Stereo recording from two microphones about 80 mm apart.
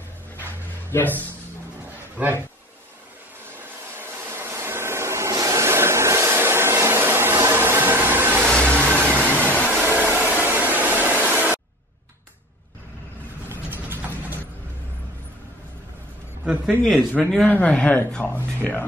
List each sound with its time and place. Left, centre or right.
0.8 s speech: left
3.5 s vehicle: right
8.5 s vehicle: centre
8.7 s vehicle: right
9.3 s a sound: left
9.7 s hair dryer: right
13.5 s a sound: right
17.1 s speech: centre
17.5 s speech: centre